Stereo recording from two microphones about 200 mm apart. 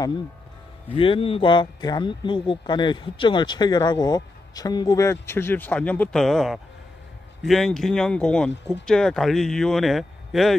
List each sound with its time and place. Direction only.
0.9 s speech: 25° left (ahead or behind); by 10.5 s centre (ahead or behind)